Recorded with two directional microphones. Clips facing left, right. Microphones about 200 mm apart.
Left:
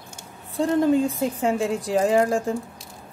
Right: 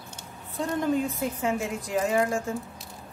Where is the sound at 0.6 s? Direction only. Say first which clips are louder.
Left 7 dB; 30° left (ahead or behind).